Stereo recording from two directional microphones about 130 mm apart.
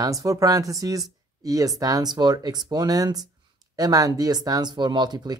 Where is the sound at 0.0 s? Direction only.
25° right (ahead or behind).